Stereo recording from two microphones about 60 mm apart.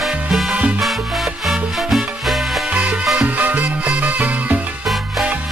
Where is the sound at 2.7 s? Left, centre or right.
Right.